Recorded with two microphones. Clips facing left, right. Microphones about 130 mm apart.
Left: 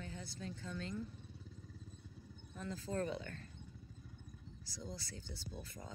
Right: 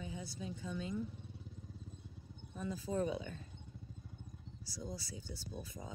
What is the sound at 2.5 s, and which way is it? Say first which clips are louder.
Speech: right 3 dB; 15° right (ahead or behind).